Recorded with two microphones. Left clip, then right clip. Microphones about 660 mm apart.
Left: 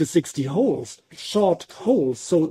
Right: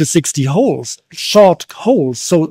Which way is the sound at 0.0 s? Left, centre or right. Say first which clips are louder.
Right 7 dB; right.